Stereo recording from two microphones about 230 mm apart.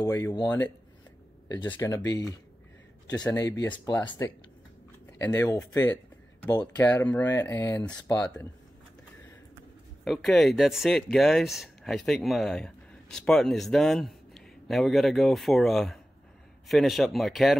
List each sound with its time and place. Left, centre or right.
0.0 s speech: centre
5.2 s speech: centre
10.0 s speech: centre